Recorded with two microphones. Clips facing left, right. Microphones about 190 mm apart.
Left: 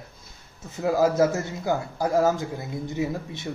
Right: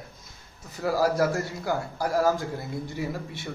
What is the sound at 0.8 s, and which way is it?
Speech, 20° left (ahead or behind).